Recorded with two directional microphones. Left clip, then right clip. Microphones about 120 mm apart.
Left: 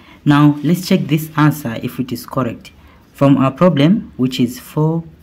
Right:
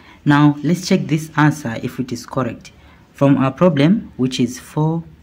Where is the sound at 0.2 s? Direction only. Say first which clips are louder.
Left 2 dB; centre (ahead or behind).